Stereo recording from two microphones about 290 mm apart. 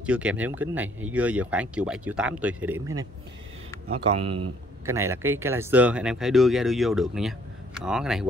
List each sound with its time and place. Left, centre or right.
0.0 s speech: centre
3.9 s speech: centre
4.8 s speech: centre